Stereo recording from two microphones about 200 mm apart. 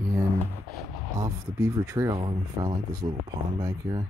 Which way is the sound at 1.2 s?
15° right (ahead or behind).